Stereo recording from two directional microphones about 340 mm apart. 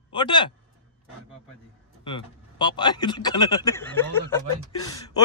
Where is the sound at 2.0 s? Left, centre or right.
Centre.